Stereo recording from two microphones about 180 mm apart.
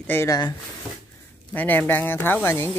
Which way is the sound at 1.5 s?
10° left (ahead or behind).